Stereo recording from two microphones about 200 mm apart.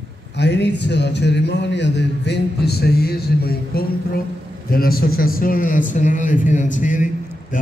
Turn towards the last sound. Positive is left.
turn(degrees=40)  # may be behind; listen again after turning